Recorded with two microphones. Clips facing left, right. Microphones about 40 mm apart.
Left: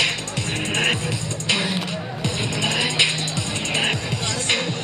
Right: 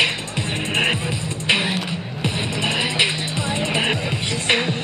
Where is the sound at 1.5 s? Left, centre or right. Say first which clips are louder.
Right 3 dB; right.